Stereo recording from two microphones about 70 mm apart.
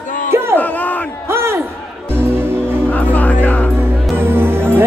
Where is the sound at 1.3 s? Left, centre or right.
Right.